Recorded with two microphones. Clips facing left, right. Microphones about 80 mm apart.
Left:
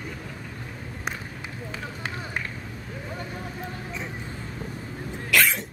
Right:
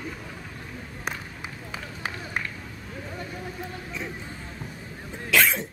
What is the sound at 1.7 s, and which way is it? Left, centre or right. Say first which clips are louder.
Run: even; centre.